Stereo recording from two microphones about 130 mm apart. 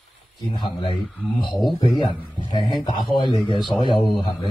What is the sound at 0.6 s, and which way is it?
Speech, 40° left (ahead or behind).